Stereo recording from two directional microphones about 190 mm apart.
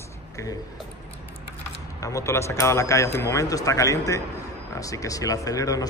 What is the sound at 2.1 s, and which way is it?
Speech, 15° left (ahead or behind).